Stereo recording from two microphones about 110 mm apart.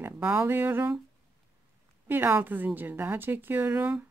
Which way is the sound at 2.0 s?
15° right (ahead or behind).